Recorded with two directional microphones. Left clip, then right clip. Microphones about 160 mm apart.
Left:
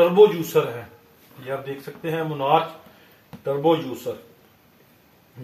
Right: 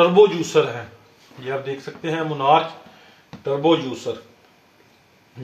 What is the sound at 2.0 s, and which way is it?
Speech, 30° right (ahead or behind).